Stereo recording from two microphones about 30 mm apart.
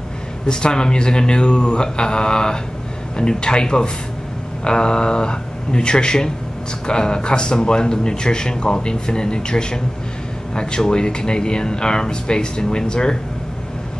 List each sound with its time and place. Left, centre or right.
0.5 s a man's voice: left